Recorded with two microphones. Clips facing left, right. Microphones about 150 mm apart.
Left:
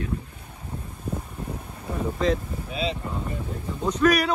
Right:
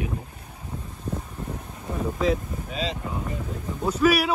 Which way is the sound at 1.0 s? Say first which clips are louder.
Even; 10° left (ahead or behind).